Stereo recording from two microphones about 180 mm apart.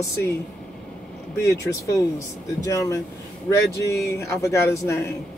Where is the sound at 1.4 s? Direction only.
15° left (ahead or behind).